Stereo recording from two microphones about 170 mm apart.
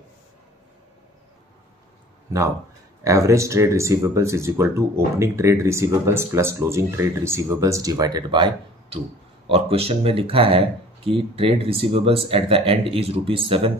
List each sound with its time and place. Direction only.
3.0 s speech: 20° right (ahead or behind)
9.5 s speech: 35° right (ahead or behind)